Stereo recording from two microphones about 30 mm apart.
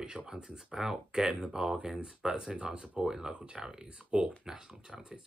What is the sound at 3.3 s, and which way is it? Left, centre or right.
Speech, right.